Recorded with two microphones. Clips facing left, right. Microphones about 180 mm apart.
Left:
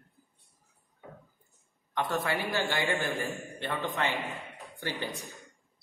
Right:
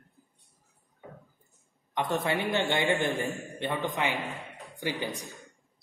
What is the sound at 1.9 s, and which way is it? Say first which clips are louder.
A man's voice: right 2 dB; 20° right (ahead or behind).